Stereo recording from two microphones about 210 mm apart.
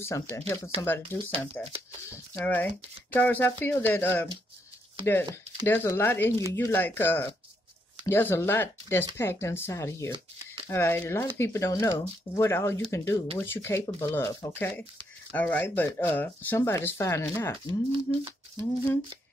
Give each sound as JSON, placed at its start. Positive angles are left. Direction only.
{"t": 0.0, "sound": "speech", "side_deg": 10}
{"t": 1.5, "sound": "speech", "side_deg": -30}
{"t": 2.0, "sound": "speech", "side_deg": 10}
{"t": 17.6, "sound": "speech", "side_deg": -25}